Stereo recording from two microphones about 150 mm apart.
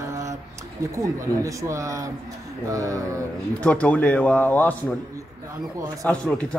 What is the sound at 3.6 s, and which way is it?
A man's voice, 10° left (ahead or behind).